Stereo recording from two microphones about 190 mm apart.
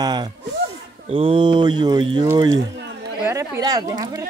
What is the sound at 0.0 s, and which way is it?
Speech, 20° right (ahead or behind).